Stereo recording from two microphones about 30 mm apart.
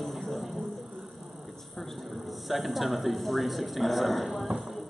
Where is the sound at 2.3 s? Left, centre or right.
Centre.